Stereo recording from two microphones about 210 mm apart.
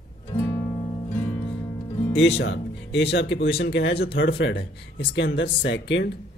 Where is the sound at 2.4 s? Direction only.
55° left (ahead or behind).